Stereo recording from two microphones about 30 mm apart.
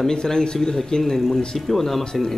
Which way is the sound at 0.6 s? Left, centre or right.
Centre.